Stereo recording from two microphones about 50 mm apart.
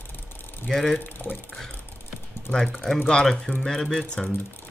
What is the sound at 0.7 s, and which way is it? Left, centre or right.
Speech, centre.